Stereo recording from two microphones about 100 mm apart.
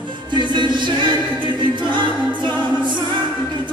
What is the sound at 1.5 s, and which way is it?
Choir, 50° right (ahead or behind).